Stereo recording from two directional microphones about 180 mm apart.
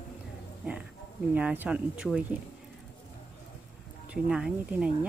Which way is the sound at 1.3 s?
10° right (ahead or behind).